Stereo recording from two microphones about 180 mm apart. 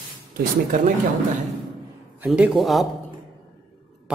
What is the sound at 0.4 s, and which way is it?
Speech, 50° right (ahead or behind).